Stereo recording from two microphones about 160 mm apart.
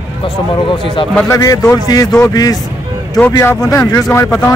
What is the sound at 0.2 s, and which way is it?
Speech, 35° left (ahead or behind).